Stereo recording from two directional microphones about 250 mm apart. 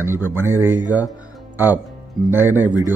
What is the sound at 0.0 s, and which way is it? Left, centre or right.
Speech, centre.